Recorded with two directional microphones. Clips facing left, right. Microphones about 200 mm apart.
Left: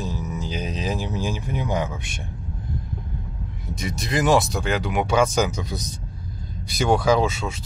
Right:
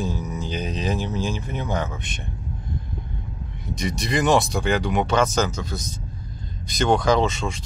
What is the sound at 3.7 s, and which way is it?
Speech, 5° left (ahead or behind).